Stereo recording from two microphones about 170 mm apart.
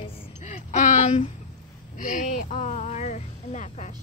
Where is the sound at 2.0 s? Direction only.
50° left (ahead or behind).